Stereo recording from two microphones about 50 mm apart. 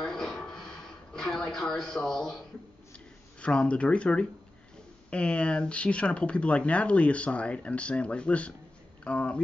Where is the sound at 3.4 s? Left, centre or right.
Left.